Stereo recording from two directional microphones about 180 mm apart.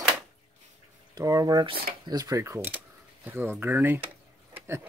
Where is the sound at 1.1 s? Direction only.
20° right (ahead or behind).